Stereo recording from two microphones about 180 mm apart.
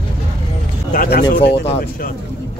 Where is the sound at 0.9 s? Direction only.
50° left (ahead or behind).